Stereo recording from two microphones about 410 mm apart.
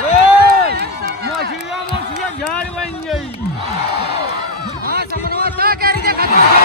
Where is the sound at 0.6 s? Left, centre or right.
Right.